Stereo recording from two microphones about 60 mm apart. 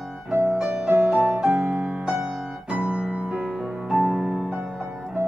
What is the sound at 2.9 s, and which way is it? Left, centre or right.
Music, centre.